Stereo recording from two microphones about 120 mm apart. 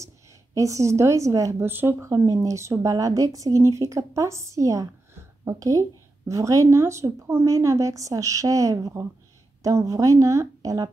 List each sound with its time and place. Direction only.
0.6 s a woman's voice: 25° right (ahead or behind)